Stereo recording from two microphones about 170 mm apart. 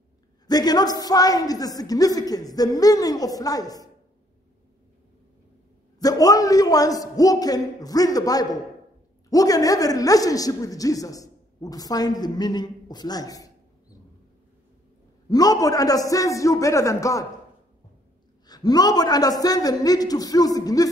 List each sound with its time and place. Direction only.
0.5 s speech: 25° left (ahead or behind)
5.9 s speech: 20° left (ahead or behind)
15.2 s speech: 20° left (ahead or behind)
18.5 s speech: 25° left (ahead or behind)